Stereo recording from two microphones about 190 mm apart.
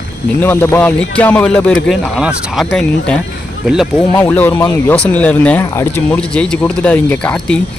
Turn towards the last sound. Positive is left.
turn(degrees=5)  # may be behind; listen again after turning